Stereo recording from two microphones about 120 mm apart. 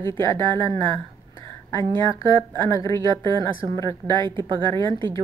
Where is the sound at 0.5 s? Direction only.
45° right (ahead or behind).